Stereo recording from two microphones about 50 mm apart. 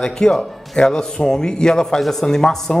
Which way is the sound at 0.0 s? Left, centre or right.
Centre.